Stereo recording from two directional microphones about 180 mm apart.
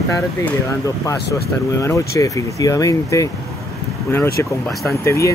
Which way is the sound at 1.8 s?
15° left (ahead or behind).